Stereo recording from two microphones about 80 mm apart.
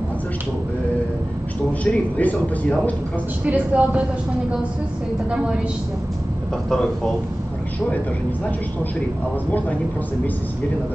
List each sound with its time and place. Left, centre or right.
1.7 s speech: centre
3.4 s speech: centre
5.3 s speech: centre